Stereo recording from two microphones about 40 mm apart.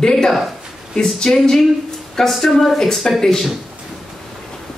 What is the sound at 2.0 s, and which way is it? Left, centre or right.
Speech, centre.